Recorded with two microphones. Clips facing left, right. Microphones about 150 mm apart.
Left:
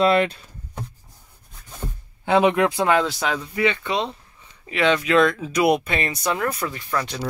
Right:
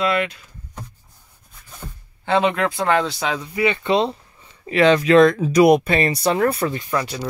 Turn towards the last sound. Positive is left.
turn(degrees=-5)  # may be behind; listen again after turning